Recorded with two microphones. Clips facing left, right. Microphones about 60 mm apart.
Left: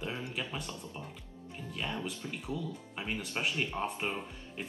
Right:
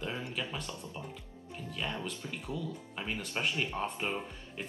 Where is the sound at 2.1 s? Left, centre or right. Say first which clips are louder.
Left 1 dB; centre.